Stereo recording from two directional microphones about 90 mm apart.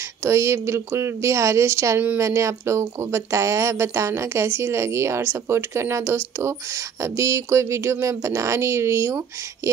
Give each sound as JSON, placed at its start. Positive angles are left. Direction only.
{"t": 0.2, "sound": "a woman's voice", "side_deg": -30}